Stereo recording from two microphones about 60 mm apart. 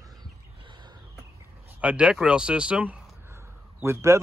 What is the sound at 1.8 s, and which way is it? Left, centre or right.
Speech, centre.